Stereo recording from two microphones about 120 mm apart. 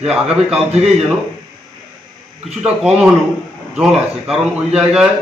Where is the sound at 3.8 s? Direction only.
5° right (ahead or behind).